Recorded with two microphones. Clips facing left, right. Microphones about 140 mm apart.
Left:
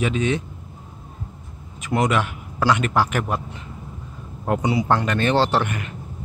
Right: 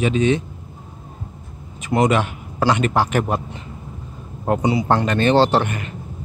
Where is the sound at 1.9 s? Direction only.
25° right (ahead or behind).